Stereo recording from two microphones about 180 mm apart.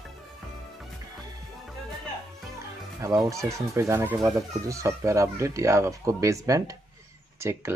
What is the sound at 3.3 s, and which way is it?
Speech, 15° right (ahead or behind).